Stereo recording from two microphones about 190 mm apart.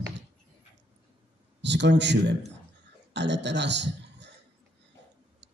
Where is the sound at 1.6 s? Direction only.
65° right (ahead or behind).